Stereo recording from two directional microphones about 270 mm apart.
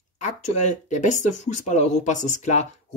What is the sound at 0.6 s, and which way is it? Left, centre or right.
Speech, left.